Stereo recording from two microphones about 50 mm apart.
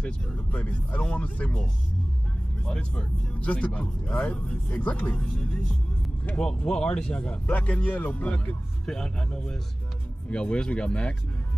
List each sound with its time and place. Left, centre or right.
0.0 s speech: left
2.6 s speech: centre
5.2 s speech: centre
6.7 s speech: centre
8.8 s speech: centre